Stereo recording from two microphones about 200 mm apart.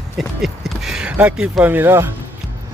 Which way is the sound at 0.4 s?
Centre (ahead or behind).